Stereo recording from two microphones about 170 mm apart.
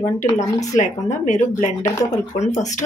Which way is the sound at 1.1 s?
45° left (ahead or behind).